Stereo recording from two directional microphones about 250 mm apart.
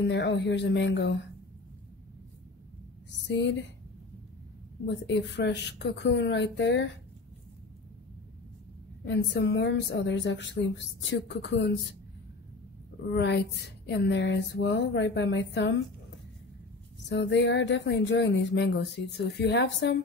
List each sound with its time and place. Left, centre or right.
0.0 s speech: left
3.3 s speech: left
4.8 s speech: left
9.0 s speech: left
13.1 s speech: left
17.1 s speech: left